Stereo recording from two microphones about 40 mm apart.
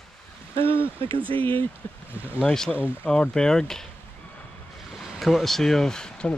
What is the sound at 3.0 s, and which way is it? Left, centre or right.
Speech, centre.